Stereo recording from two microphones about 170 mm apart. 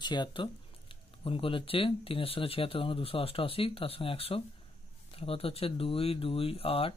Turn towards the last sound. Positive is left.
turn(degrees=35)  # may be behind; listen again after turning